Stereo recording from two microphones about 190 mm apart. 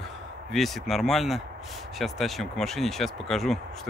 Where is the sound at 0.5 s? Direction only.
Centre (ahead or behind).